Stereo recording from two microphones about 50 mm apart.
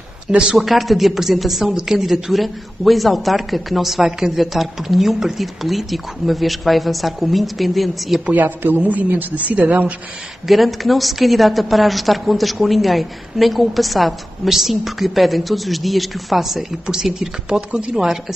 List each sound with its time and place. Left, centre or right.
0.6 s a woman's voice: centre
8.3 s speech: right
10.4 s a woman's voice: centre
17.6 s speech: right
17.9 s speech: centre